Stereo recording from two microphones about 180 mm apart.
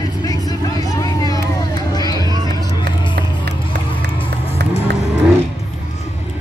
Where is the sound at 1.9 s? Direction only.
20° left (ahead or behind).